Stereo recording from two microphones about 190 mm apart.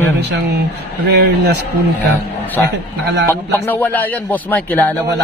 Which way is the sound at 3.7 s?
10° left (ahead or behind).